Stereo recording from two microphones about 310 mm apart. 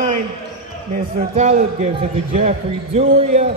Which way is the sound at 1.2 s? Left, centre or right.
Right.